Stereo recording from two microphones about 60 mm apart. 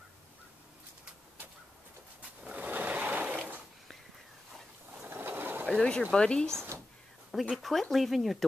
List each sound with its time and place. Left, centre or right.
2.4 s sewing machine: right
4.9 s a sound: right
5.7 s speech: centre
7.2 s speech: centre